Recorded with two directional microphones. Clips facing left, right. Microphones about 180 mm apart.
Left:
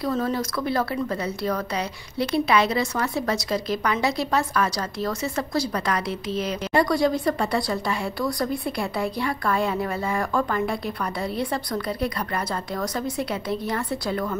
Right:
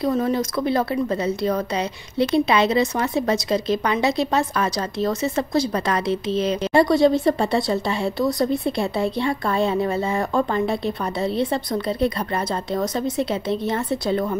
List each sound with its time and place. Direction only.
0.0 s a woman's voice: 20° right (ahead or behind)